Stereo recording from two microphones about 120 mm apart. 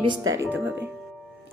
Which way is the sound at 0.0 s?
35° right (ahead or behind).